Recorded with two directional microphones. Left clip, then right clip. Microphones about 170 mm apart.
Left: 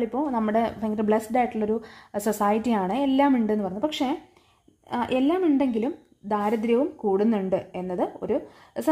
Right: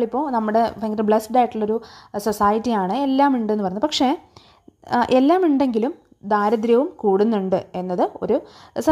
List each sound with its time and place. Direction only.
0.0 s a woman's voice: 20° right (ahead or behind)
3.8 s a woman's voice: 35° right (ahead or behind)